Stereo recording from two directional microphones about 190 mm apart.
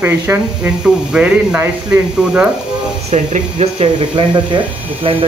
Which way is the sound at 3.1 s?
35° right (ahead or behind).